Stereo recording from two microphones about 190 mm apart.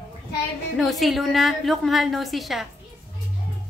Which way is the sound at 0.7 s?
Centre (ahead or behind).